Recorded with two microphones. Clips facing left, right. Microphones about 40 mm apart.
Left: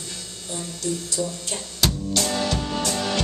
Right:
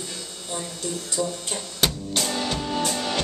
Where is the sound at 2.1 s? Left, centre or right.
Centre.